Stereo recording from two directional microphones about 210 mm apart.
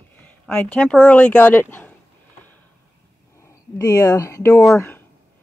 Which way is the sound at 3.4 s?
15° left (ahead or behind).